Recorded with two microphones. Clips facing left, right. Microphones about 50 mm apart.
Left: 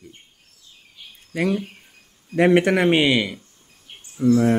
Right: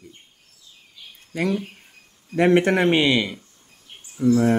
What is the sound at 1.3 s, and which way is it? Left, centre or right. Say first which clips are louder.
Speech: left 1 dB; centre.